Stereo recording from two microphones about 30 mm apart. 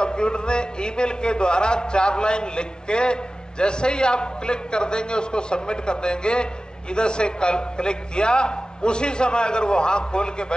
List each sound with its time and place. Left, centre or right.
0.0 s a man's voice: left